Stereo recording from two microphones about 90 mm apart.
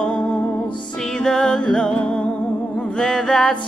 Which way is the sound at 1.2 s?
10° left (ahead or behind).